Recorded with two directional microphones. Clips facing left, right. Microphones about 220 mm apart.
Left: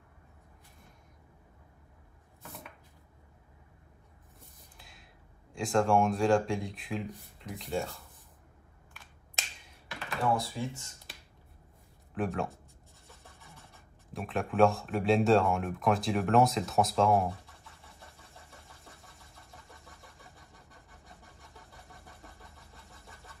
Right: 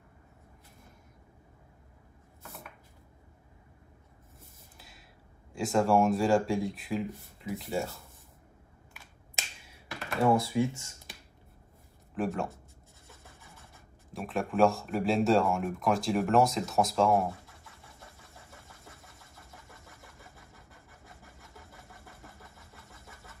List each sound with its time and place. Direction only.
4.7 s a sound: centre (ahead or behind)
5.5 s speech: centre (ahead or behind)
10.3 s speech: 20° right (ahead or behind)
12.1 s speech: centre (ahead or behind)
14.1 s speech: centre (ahead or behind)